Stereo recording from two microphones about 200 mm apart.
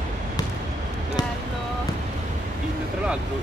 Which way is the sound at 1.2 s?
20° left (ahead or behind).